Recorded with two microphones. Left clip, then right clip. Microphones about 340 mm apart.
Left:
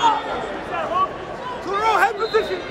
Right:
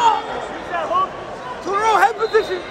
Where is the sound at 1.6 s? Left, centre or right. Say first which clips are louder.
Right 3 dB; right.